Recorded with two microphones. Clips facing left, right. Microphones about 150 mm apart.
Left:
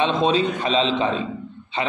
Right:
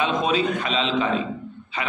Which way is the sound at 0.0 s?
30° left (ahead or behind).